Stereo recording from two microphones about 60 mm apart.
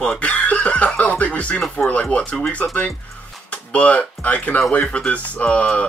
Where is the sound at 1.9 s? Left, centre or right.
Left.